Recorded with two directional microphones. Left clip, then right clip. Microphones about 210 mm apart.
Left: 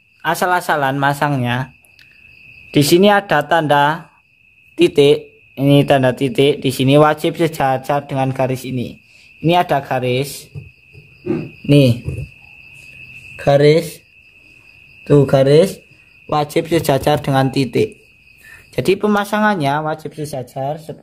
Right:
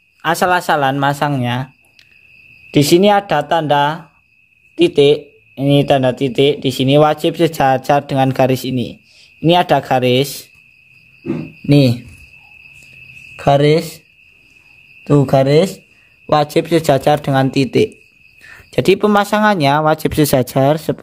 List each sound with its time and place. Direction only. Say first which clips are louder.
0.2 s speech: right 2 dB; 20° right (ahead or behind)
2.7 s a man's voice: right 1 dB; 5° right (ahead or behind); by 10.5 s 20° right (ahead or behind)
11.6 s speech: even; 10° right (ahead or behind)
13.4 s speech: even; 15° right (ahead or behind)
15.0 s speech: left 1 dB; 10° right (ahead or behind); by 20.1 s 25° right (ahead or behind)
20.2 s speech: right 11 dB; 50° right (ahead or behind)